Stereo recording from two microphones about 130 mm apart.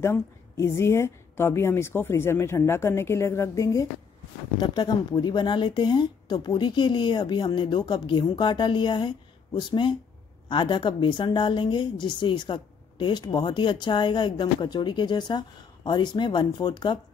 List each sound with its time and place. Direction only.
0.0 s a woman's voice: 20° left (ahead or behind); by 17.0 s 35° left (ahead or behind)